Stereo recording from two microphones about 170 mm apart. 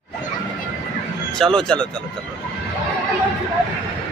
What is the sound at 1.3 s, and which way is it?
Speech, 5° left (ahead or behind).